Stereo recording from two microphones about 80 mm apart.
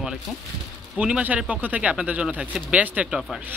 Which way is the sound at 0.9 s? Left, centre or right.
Centre.